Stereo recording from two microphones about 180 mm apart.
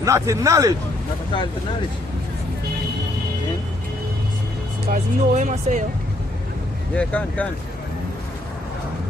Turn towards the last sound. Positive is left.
turn(degrees=5)  # may be behind; listen again after turning